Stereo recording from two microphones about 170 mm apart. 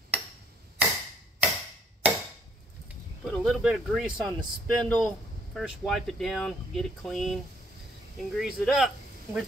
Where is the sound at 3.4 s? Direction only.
Centre (ahead or behind).